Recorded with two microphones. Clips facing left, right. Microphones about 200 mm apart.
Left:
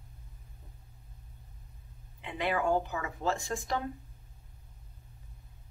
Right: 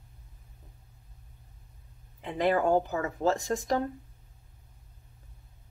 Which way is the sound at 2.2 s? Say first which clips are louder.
Right 6 dB; 40° right (ahead or behind).